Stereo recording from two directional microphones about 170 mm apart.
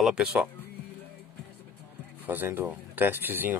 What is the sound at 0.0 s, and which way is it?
Speech, 5° right (ahead or behind).